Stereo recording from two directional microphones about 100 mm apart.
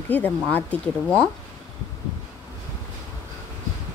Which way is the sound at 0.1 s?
15° left (ahead or behind).